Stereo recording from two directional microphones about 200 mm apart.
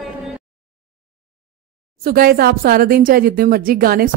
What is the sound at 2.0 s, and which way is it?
Speech, 45° right (ahead or behind).